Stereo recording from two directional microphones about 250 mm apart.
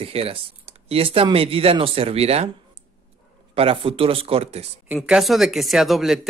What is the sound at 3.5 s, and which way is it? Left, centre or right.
Speech, right.